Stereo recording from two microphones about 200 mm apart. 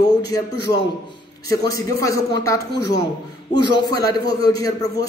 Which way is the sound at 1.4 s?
15° left (ahead or behind).